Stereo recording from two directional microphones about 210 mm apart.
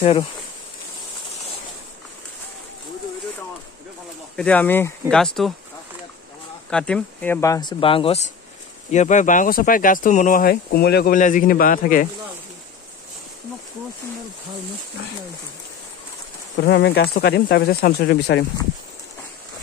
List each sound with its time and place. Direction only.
0.0 s speech: 25° left (ahead or behind)
4.4 s speech: 5° left (ahead or behind)
6.7 s speech: 5° left (ahead or behind); by 12.1 s 40° left (ahead or behind)
16.5 s speech: 55° left (ahead or behind)